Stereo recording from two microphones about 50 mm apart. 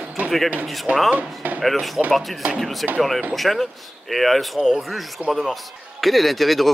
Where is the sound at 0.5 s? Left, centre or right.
Right.